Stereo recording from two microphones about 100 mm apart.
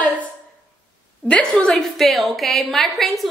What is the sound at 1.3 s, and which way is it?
A woman's voice, 10° left (ahead or behind).